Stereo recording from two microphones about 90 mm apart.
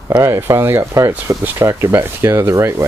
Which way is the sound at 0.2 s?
35° right (ahead or behind).